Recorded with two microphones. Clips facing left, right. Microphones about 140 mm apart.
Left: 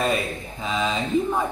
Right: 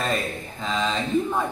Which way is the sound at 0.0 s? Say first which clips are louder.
Left 2 dB; 5° left (ahead or behind).